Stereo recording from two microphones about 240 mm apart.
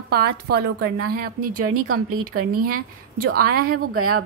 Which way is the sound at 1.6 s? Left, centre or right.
Right.